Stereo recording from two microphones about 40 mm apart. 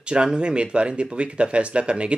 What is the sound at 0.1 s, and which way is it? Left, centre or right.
Speech, right.